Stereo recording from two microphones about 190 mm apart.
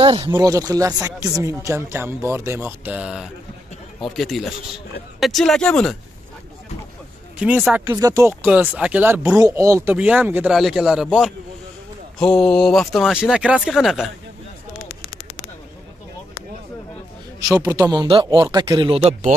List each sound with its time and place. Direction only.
0.0 s a man's voice: 25° right (ahead or behind); by 5.9 s 5° left (ahead or behind)
7.3 s speech: 5° right (ahead or behind)
7.9 s speech: 20° right (ahead or behind); by 14.1 s centre (ahead or behind)
17.4 s a man's voice: 20° right (ahead or behind)